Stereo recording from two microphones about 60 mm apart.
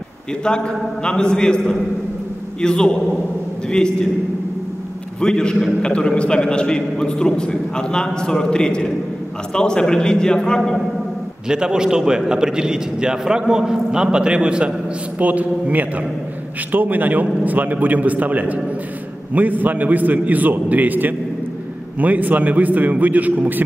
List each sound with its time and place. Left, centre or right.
0.3 s a man's voice: centre
5.2 s a man's voice: centre
11.4 s a man's voice: centre; by 23.6 s right